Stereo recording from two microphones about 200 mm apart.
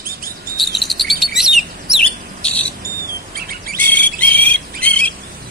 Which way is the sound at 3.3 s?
45° right (ahead or behind).